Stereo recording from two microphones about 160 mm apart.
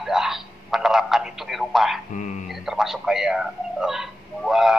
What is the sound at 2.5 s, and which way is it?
A man's voice, centre (ahead or behind).